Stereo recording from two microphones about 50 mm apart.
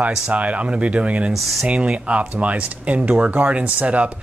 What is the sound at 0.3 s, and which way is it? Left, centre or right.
Speech, right.